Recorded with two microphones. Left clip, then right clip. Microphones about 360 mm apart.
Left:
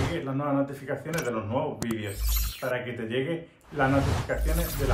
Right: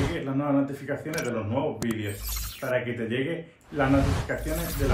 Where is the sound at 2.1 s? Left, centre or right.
Centre.